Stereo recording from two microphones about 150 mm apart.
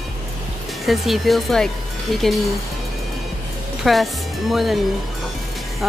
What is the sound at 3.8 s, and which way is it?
Speech, centre (ahead or behind).